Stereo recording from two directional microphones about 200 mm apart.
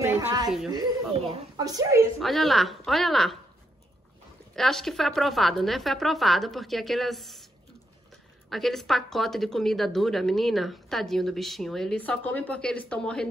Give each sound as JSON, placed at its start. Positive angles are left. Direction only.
{"t": 0.0, "sound": "a sound", "side_deg": -15}
{"t": 1.1, "sound": "speech", "side_deg": -30}
{"t": 1.6, "sound": "a woman's voice", "side_deg": -20}
{"t": 2.1, "sound": "a woman's voice", "side_deg": 0}
{"t": 4.6, "sound": "a woman's voice", "side_deg": 0}
{"t": 8.5, "sound": "a woman's voice", "side_deg": 0}